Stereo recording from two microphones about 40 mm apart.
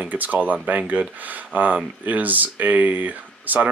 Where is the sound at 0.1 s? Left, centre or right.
Right.